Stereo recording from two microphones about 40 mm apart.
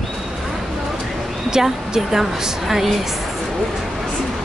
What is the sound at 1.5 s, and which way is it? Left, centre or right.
A woman's voice, centre.